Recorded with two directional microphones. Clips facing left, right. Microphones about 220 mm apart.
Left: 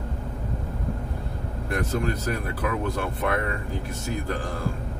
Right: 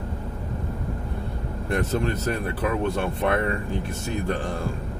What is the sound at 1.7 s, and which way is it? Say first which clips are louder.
Speech: right 2 dB; 25° right (ahead or behind).